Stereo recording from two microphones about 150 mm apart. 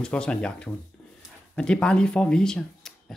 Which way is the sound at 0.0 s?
5° left (ahead or behind).